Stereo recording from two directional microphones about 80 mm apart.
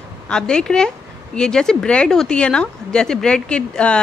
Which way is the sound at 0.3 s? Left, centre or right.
Centre.